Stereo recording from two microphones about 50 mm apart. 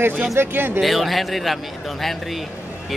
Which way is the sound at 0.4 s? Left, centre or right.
Right.